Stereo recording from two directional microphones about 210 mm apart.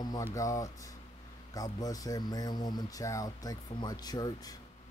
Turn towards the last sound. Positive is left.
turn(degrees=20)  # may be behind; listen again after turning